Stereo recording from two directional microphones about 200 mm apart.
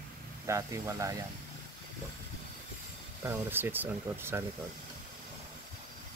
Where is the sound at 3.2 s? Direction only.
10° right (ahead or behind).